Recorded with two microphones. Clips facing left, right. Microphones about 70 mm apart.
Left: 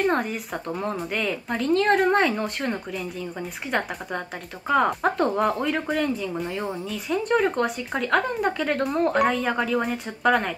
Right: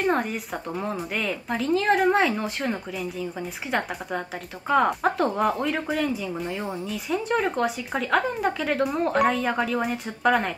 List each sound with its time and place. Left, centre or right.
0.0 s speech: centre